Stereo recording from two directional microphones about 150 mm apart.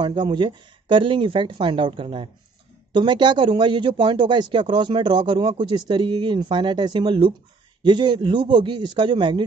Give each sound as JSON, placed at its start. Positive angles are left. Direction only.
{"t": 0.0, "sound": "speech", "side_deg": -30}